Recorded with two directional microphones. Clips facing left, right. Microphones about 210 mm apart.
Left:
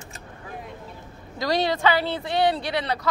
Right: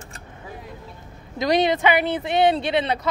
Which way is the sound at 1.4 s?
20° right (ahead or behind).